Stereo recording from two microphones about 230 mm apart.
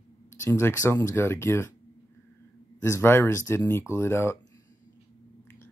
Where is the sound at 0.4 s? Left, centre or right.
Centre.